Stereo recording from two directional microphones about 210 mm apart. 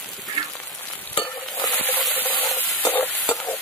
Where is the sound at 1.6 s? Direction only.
10° left (ahead or behind).